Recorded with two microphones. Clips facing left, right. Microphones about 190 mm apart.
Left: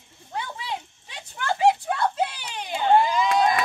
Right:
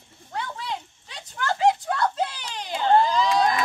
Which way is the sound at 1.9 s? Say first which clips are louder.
Even; 15° left (ahead or behind).